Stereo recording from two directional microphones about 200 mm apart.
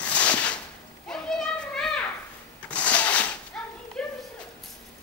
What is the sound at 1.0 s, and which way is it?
Children playing, 5° left (ahead or behind).